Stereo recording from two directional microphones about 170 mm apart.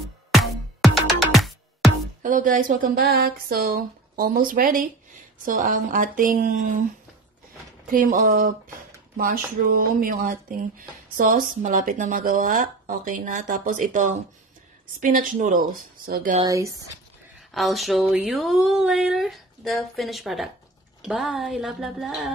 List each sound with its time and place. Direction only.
0.3 s music: centre (ahead or behind)
2.2 s a woman's voice: 50° right (ahead or behind)
7.9 s a woman's voice: 55° right (ahead or behind)
16.4 s speech: 20° right (ahead or behind)
17.5 s speech: centre (ahead or behind)